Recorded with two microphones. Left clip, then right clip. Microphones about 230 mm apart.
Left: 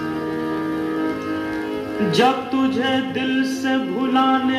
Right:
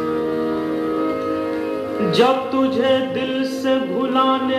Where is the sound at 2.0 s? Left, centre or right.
Left.